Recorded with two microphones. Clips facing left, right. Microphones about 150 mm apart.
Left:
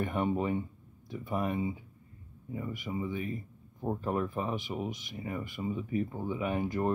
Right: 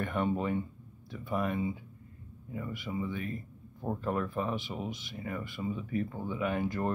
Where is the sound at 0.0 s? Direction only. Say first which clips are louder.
Left 1 dB; 15° left (ahead or behind).